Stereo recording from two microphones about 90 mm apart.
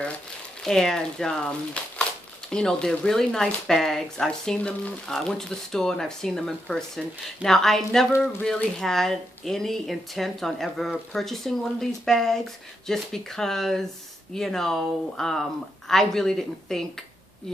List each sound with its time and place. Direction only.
0.6 s speech: 5° left (ahead or behind)
4.6 s speech: 15° left (ahead or behind)